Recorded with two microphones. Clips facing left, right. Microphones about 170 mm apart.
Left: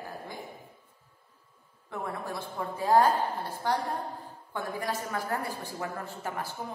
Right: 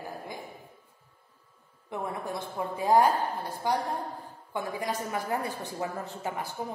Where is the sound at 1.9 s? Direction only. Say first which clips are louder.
Right 2 dB; 20° right (ahead or behind).